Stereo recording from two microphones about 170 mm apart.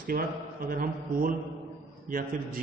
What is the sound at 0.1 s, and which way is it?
A man's voice, 60° right (ahead or behind).